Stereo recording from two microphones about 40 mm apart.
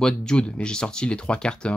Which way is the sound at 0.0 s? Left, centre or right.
Left.